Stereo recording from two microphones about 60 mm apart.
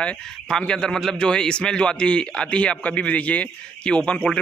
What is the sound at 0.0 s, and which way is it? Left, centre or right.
A man's voice, centre.